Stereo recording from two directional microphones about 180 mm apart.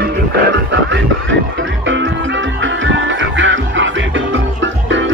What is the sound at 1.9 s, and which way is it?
Music, 90° right.